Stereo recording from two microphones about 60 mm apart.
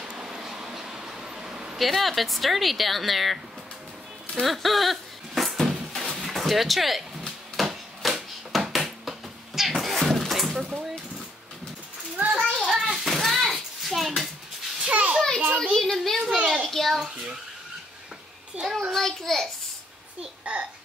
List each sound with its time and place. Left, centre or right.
0.1 s a sound: centre
1.8 s speech: centre
4.4 s a sound: centre
12.5 s a sound: centre
14.8 s children playing: right
15.4 s a child's voice: centre
15.7 s speech: centre
18.6 s speech: centre
20.2 s speech: centre